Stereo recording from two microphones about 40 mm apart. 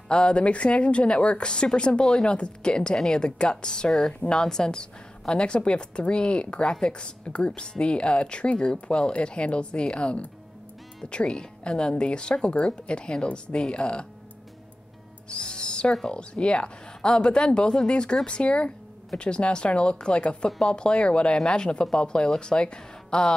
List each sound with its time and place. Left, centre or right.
0.1 s a woman's voice: left
15.2 s owl: left
15.9 s speech: centre
16.2 s a woman's voice: left